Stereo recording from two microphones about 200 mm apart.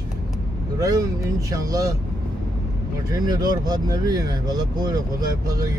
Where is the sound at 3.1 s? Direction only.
20° right (ahead or behind).